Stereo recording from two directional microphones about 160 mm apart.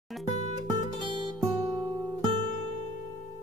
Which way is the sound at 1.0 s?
30° right (ahead or behind).